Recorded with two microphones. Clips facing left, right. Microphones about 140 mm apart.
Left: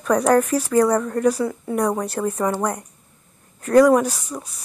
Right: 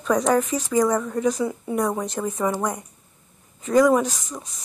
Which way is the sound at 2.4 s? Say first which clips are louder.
Even; 10° right (ahead or behind).